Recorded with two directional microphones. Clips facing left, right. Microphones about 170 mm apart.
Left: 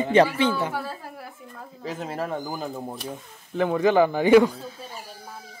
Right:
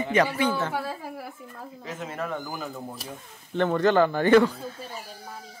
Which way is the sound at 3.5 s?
5° left (ahead or behind).